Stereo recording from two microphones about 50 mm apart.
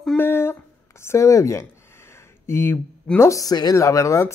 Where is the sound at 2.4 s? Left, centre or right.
Left.